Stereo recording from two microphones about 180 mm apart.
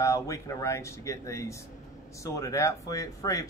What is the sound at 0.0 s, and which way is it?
Speech, 15° left (ahead or behind).